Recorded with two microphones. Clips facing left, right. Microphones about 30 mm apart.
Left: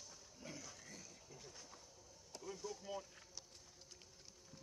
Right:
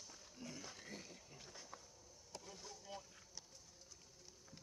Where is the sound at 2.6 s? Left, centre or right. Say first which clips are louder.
Left 8 dB; right.